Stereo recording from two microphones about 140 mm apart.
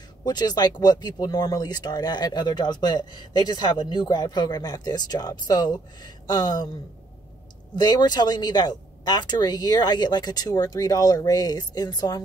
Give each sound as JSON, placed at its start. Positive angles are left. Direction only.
{"t": 0.2, "sound": "speech", "side_deg": 30}
{"t": 7.7, "sound": "speech", "side_deg": 30}